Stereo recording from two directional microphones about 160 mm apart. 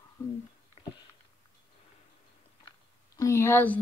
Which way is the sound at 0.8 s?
45° left (ahead or behind).